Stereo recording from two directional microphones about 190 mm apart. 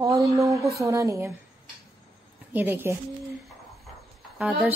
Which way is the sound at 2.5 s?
10° right (ahead or behind).